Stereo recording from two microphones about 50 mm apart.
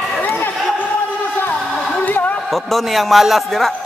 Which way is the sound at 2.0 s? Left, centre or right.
Left.